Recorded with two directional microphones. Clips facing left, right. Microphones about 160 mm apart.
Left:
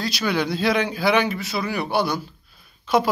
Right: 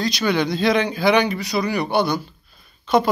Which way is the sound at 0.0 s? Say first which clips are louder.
Right 3 dB; 5° left (ahead or behind).